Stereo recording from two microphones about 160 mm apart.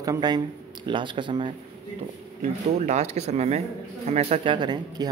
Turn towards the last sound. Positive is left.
turn(degrees=-30)  # may be behind; listen again after turning